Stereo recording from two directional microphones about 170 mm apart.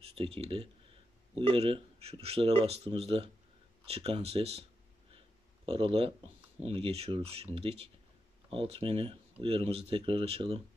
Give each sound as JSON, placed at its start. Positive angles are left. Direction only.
{"t": 0.1, "sound": "speech", "side_deg": -35}
{"t": 5.7, "sound": "speech", "side_deg": -35}